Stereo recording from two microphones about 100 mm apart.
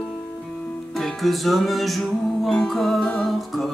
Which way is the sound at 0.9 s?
Centre (ahead or behind).